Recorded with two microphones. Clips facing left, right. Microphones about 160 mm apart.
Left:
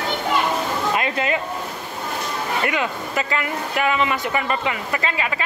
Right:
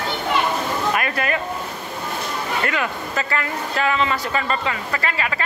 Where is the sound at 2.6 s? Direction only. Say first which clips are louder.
Left 1 dB; 15° left (ahead or behind).